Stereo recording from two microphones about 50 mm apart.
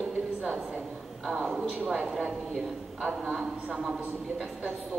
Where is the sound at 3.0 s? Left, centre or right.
Right.